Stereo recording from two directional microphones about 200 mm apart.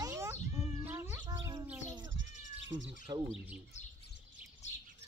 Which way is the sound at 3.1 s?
20° right (ahead or behind).